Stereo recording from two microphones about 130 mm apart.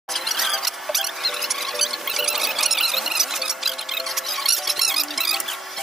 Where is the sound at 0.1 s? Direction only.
Centre (ahead or behind).